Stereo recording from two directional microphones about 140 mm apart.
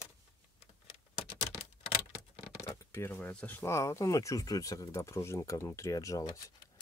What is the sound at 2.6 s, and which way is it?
Speech, 20° left (ahead or behind).